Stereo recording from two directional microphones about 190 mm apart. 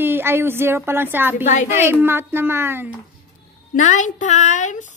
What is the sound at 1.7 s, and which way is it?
A woman's voice, 10° right (ahead or behind).